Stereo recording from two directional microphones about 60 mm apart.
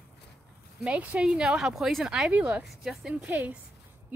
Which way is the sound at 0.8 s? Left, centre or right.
Right.